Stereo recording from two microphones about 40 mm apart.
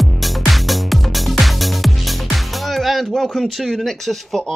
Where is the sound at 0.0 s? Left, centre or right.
Centre.